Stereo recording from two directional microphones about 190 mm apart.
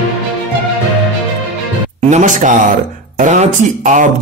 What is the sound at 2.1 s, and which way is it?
Speech, 40° right (ahead or behind).